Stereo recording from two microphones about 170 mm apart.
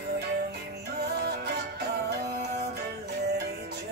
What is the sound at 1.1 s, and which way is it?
Music, 70° right (ahead or behind).